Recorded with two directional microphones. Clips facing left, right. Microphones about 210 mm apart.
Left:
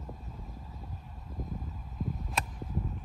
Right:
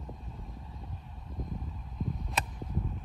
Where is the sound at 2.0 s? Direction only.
5° left (ahead or behind).